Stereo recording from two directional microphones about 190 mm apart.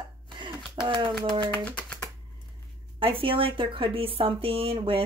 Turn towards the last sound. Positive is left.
turn(degrees=-30)  # may be behind; listen again after turning